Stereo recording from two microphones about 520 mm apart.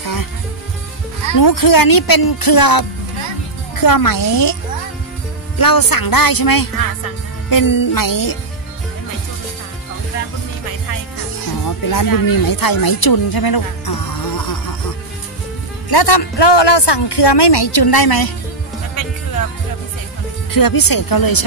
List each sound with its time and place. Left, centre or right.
0.0 s music: left
1.3 s speech: left
5.6 s speech: left
11.9 s speech: left
15.9 s speech: left
20.5 s speech: left